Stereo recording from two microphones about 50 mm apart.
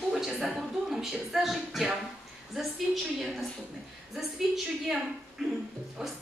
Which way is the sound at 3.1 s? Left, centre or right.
Centre.